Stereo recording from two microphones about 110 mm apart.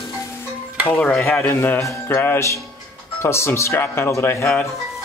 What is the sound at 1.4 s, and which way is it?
A man's voice, 20° left (ahead or behind).